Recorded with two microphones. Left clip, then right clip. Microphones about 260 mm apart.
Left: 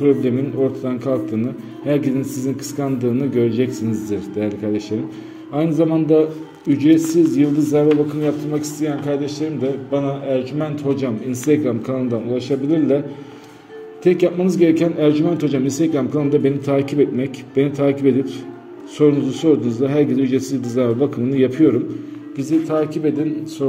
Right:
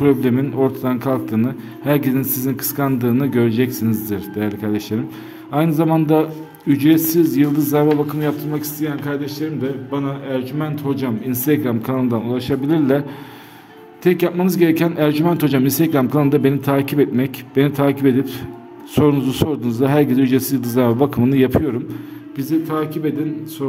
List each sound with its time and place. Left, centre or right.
0.0 s a man's voice: right
14.0 s a man's voice: right